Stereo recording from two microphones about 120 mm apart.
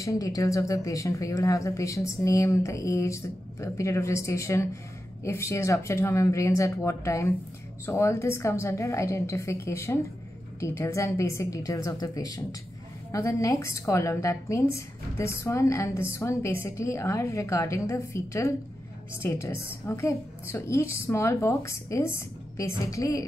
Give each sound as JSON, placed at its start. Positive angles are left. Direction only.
{"t": 0.0, "sound": "speech", "side_deg": 30}